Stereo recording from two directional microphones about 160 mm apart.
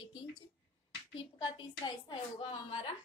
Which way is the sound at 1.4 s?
30° left (ahead or behind).